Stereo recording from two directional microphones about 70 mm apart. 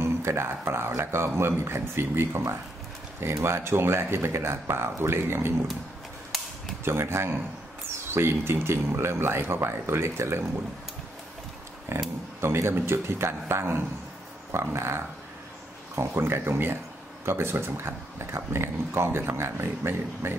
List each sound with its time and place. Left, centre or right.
0.0 s speech: right
6.8 s speech: right
11.9 s speech: right